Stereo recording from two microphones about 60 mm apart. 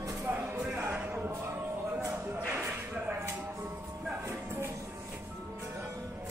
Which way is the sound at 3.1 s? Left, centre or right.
Right.